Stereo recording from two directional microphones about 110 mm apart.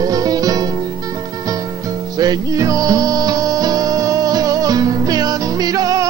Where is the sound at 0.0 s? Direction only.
35° right (ahead or behind).